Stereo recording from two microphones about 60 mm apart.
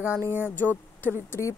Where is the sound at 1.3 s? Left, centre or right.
Left.